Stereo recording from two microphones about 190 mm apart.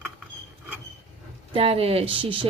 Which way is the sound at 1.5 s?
30° right (ahead or behind).